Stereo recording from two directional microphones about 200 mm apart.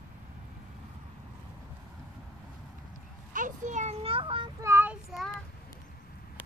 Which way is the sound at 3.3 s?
40° right (ahead or behind).